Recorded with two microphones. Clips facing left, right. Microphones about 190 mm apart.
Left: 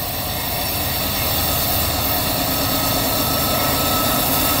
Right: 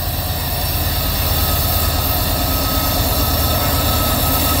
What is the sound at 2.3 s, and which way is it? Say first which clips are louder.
Vehicle: right 1 dB; centre (ahead or behind).